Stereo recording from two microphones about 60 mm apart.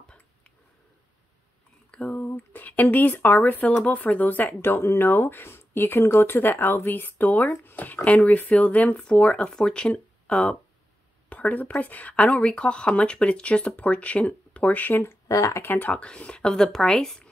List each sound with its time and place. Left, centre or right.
1.9 s speech: left
15.2 s speech: left
15.6 s speech: left
15.9 s speech: centre